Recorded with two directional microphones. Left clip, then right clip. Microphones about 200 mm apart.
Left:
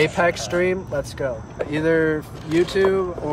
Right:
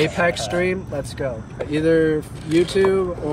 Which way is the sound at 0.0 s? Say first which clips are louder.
Even; 10° left (ahead or behind).